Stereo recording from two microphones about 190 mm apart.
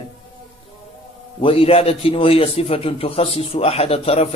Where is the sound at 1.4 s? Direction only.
30° left (ahead or behind).